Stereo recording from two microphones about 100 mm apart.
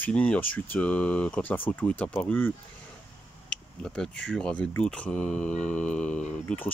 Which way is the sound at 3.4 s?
5° left (ahead or behind).